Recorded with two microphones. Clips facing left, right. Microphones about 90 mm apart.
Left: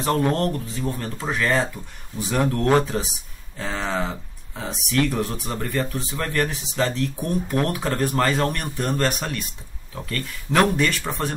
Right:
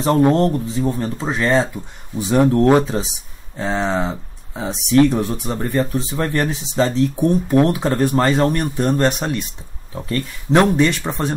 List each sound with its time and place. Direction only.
0.0 s speech: 25° right (ahead or behind)